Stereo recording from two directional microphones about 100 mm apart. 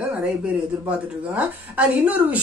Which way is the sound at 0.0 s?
15° right (ahead or behind).